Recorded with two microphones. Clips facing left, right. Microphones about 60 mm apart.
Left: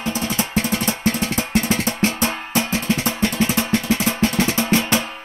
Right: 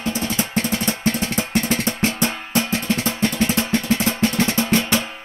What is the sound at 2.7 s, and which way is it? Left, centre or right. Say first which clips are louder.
Drum: left 1 dB; centre.